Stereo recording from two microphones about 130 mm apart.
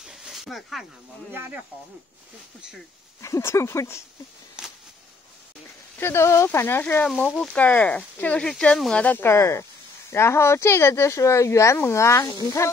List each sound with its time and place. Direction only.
0.0 s snake: 5° right (ahead or behind)
1.3 s speech: 15° right (ahead or behind)
3.2 s speech: 25° left (ahead or behind)
4.6 s a sound: 5° right (ahead or behind)
5.9 s speech: 20° left (ahead or behind)